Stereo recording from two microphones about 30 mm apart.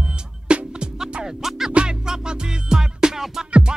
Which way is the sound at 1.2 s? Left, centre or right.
Centre.